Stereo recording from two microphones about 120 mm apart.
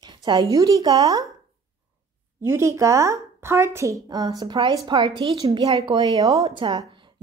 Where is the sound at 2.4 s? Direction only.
25° right (ahead or behind).